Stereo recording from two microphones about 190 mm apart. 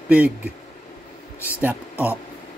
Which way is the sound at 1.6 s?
10° right (ahead or behind).